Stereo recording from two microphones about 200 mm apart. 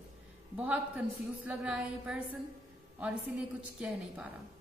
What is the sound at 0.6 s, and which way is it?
A woman's voice, 5° right (ahead or behind).